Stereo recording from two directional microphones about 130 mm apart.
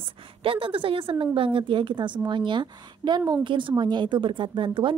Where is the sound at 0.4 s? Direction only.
40° right (ahead or behind).